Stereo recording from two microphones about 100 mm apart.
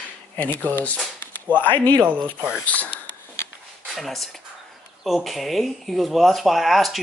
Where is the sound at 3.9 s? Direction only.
Centre (ahead or behind).